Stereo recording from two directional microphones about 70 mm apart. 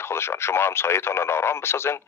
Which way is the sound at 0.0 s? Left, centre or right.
Left.